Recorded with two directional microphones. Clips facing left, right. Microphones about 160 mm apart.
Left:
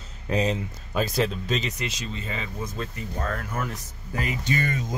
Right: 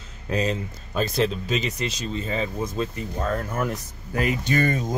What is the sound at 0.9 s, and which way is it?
Speech, 5° left (ahead or behind).